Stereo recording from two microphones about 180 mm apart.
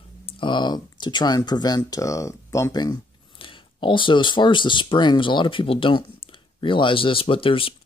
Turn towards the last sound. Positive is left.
turn(degrees=30)  # may be behind; listen again after turning